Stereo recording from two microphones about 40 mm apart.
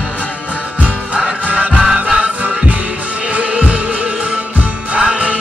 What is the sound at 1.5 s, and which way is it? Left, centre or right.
Music, right.